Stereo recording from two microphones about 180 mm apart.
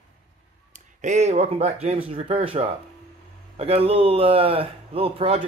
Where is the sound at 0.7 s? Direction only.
40° right (ahead or behind).